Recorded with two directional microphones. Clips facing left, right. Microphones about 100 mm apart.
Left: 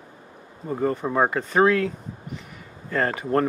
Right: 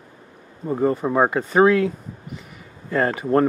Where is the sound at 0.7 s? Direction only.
10° right (ahead or behind).